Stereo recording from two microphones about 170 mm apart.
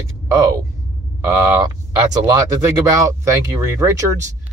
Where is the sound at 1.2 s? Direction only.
20° right (ahead or behind).